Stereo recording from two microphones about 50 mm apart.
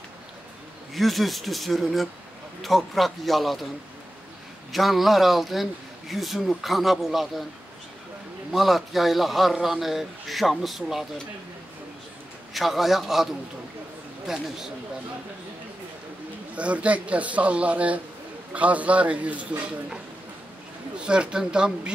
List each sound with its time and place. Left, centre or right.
0.9 s speech: centre
4.7 s speech: centre
8.5 s speech: centre
12.5 s speech: centre
16.5 s a man's voice: right
21.0 s speech: centre